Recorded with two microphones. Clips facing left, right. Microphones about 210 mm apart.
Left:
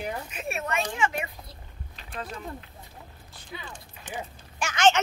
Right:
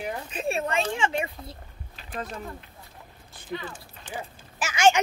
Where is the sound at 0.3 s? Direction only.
30° right (ahead or behind).